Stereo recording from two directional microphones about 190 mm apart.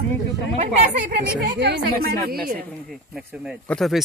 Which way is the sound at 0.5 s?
35° right (ahead or behind).